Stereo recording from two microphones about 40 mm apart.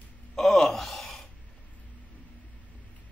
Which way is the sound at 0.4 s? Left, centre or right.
Centre.